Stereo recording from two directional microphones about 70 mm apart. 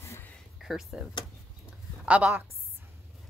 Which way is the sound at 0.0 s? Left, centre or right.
Left.